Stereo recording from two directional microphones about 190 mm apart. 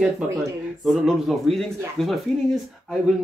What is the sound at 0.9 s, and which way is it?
Speech, centre (ahead or behind).